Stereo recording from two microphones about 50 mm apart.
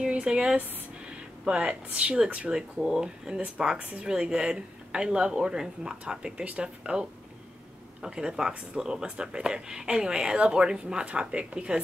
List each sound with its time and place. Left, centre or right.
0.0 s speech: centre
2.5 s speech: centre